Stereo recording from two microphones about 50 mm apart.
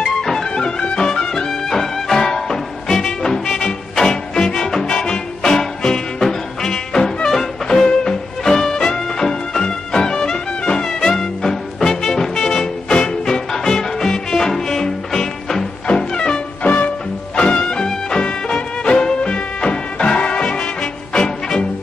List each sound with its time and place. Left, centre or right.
0.0 s music: centre
16.6 s music: left